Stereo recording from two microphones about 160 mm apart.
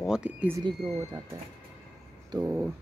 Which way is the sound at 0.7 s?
25° right (ahead or behind).